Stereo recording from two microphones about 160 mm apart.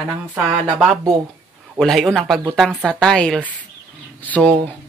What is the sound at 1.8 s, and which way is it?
Speech, centre (ahead or behind).